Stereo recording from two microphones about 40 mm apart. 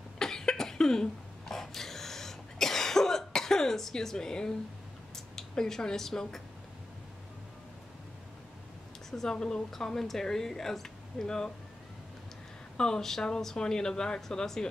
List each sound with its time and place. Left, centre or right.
0.2 s cough: centre
5.5 s speech: centre
9.1 s speech: centre
12.7 s speech: centre